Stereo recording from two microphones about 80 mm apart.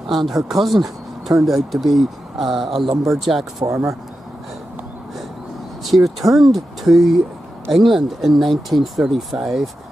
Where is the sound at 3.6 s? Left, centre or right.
Right.